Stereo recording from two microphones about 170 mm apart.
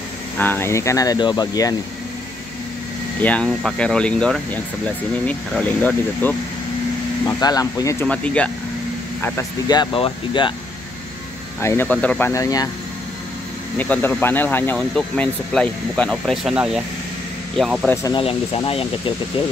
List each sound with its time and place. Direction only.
0.4 s speech: 10° left (ahead or behind)
3.2 s speech: 10° left (ahead or behind)
7.2 s speech: 20° left (ahead or behind)
8.1 s speech: 5° left (ahead or behind)
9.2 s speech: 20° left (ahead or behind)
11.6 s speech: 15° left (ahead or behind)
13.7 s speech: 10° left (ahead or behind)
18.0 s speech: 30° left (ahead or behind)